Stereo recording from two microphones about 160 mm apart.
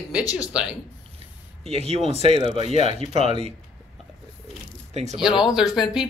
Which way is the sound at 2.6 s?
45° left (ahead or behind).